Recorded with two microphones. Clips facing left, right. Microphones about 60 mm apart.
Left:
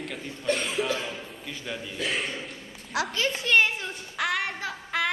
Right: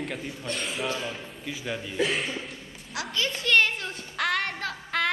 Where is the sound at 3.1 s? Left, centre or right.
Left.